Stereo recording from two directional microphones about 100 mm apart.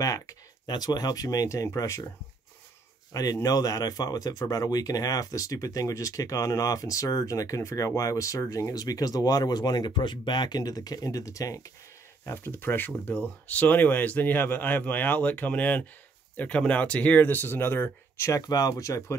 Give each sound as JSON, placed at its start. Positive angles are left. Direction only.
{"t": 0.0, "sound": "speech", "side_deg": 35}
{"t": 3.1, "sound": "speech", "side_deg": 40}
{"t": 12.3, "sound": "speech", "side_deg": 20}
{"t": 18.5, "sound": "speech", "side_deg": 40}